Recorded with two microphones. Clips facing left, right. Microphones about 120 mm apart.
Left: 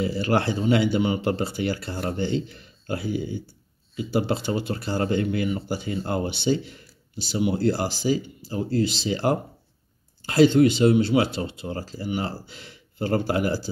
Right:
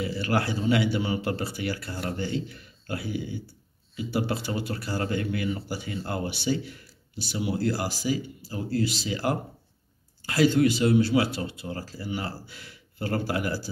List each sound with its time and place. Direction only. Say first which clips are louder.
0.0 s speech: left 4 dB; 30° left (ahead or behind)